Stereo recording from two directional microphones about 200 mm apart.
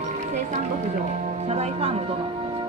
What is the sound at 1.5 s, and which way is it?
Music, 30° right (ahead or behind).